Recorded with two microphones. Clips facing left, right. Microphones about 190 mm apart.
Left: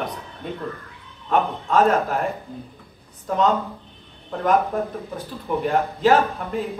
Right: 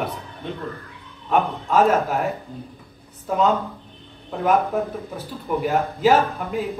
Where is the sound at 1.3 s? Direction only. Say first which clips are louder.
Even; 5° right (ahead or behind).